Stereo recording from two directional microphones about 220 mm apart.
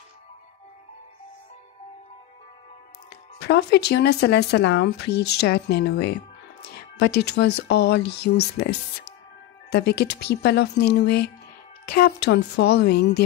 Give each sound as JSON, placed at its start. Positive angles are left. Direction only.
{"t": 3.3, "sound": "speech", "side_deg": 50}